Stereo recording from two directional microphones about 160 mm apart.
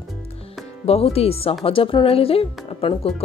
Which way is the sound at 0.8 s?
40° left (ahead or behind).